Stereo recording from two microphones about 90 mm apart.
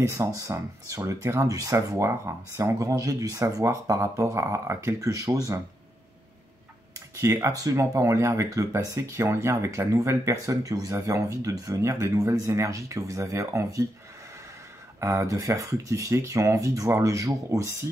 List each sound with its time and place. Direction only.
0.1 s speech: 40° right (ahead or behind)
7.2 s speech: 35° right (ahead or behind)
15.0 s speech: 30° right (ahead or behind)